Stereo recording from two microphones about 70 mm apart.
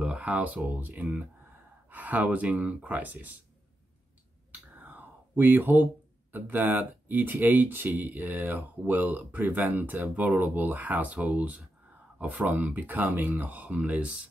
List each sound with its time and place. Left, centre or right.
0.0 s speech: centre
4.7 s a sound: right
6.3 s speech: right